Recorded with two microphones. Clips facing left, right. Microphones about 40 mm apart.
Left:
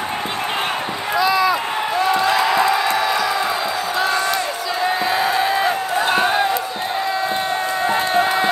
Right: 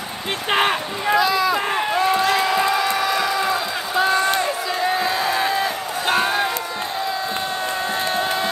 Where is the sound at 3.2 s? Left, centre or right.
Centre.